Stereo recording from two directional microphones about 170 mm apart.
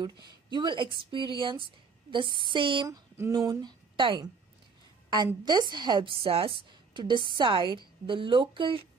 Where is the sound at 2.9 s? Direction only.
15° right (ahead or behind).